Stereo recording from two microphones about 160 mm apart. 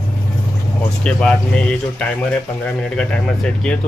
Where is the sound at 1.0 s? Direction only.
5° left (ahead or behind).